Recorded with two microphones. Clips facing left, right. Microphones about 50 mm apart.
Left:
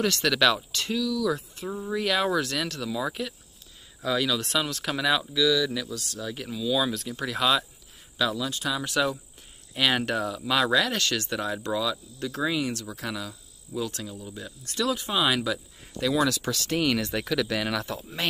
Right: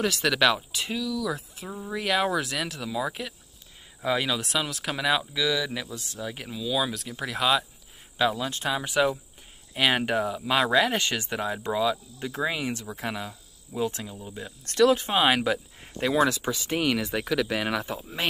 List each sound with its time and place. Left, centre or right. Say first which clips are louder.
0.0 s speech: even; centre
4.0 s speech: even; right
4.4 s speech: left 1 dB; centre
5.3 s speech: left 3 dB; right
6.5 s speech: left 2 dB; centre
8.2 s speech: right 2 dB; right
8.8 s speech: right 3 dB; centre
14.6 s speech: right 8 dB; right; by 18.2 s centre